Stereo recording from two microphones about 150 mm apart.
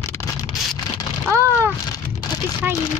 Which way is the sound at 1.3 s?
20° right (ahead or behind).